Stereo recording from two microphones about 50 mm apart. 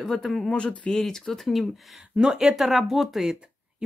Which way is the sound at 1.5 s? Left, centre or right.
Centre.